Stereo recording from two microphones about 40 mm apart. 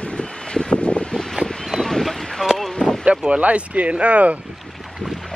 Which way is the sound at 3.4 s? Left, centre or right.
Right.